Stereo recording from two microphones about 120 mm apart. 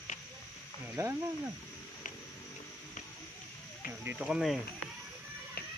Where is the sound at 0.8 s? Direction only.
20° right (ahead or behind).